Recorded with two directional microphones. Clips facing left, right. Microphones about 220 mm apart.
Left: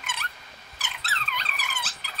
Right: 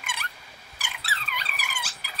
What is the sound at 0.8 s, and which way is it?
Squeak, 10° right (ahead or behind).